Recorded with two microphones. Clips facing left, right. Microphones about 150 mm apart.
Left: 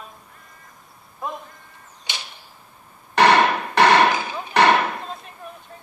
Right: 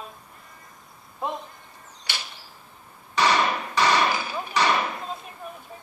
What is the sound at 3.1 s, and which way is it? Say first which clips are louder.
Hammer: left 6 dB; 60° left (ahead or behind).